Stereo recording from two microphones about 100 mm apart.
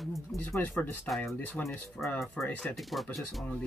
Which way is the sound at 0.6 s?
20° left (ahead or behind).